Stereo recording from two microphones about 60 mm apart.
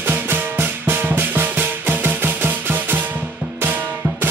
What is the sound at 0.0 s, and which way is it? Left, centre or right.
Music, right.